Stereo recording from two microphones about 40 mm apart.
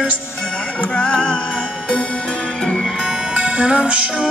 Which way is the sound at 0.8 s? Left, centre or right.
Left.